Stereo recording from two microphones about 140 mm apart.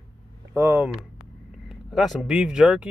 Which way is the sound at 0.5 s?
15° right (ahead or behind).